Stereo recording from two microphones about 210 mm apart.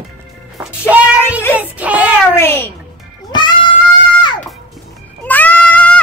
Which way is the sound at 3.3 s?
20° left (ahead or behind).